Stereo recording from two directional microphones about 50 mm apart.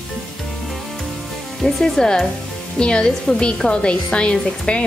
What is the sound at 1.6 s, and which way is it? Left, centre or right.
A woman's voice, centre.